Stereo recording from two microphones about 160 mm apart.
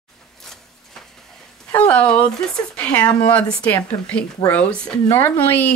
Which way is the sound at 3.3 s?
5° left (ahead or behind).